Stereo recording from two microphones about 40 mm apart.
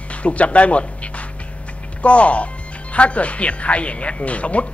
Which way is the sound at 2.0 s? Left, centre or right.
Left.